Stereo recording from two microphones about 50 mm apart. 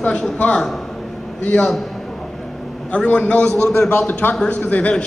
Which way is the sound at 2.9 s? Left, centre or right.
Left.